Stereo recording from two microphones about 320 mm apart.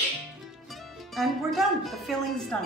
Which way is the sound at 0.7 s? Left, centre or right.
Centre.